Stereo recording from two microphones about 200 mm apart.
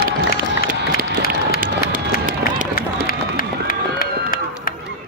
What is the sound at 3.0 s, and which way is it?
Run, 45° left (ahead or behind).